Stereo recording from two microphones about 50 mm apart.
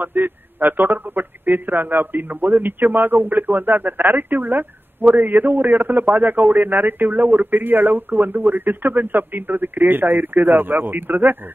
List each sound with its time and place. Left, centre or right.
0.0 s a man's voice: right